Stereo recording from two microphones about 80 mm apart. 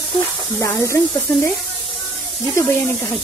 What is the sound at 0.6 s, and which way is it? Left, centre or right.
Speech, left.